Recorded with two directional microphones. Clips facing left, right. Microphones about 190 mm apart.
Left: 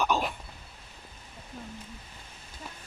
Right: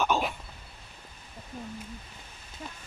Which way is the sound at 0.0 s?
Centre (ahead or behind).